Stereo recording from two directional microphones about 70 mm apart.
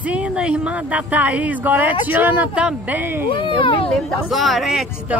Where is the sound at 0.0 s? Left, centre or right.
Centre.